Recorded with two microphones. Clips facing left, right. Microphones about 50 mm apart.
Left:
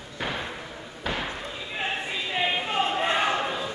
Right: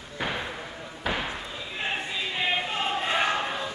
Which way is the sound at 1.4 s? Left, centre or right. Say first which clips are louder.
Left 1 dB; centre.